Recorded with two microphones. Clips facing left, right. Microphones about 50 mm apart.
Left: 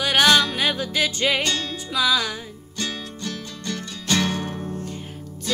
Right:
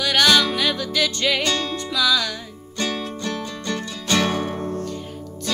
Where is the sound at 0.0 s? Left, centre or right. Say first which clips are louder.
Even; left.